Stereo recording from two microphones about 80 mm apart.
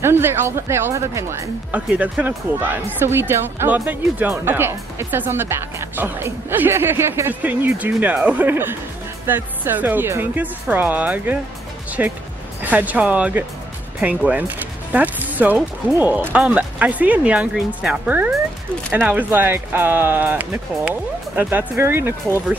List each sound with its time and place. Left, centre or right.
0.0 s speech: right
2.2 s speech: right
7.4 s speech: right